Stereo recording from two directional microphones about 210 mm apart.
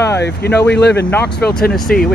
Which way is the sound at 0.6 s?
55° left (ahead or behind).